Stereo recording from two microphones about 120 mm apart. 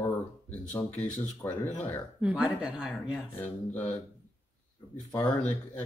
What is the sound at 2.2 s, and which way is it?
Speech, 10° right (ahead or behind).